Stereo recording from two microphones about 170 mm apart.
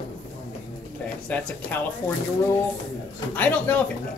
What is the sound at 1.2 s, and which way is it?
Speech, 10° left (ahead or behind).